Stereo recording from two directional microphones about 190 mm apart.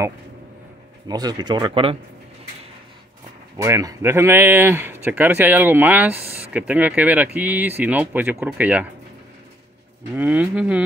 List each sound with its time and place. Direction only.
1.0 s speech: 20° right (ahead or behind)
3.6 s speech: 15° right (ahead or behind)
10.1 s speech: 10° right (ahead or behind)